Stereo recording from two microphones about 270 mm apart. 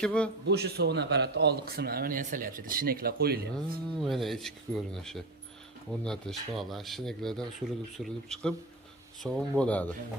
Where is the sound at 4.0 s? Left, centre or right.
Centre.